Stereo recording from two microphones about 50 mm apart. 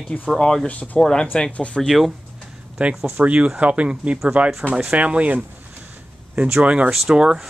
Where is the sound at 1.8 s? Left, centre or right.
Centre.